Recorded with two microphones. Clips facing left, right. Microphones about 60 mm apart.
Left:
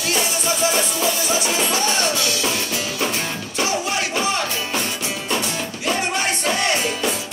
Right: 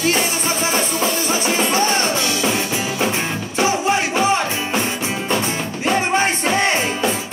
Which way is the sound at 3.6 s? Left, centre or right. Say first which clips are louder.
Right 5 dB; right.